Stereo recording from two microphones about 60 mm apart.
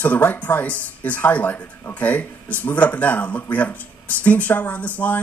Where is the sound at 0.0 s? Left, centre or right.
Left.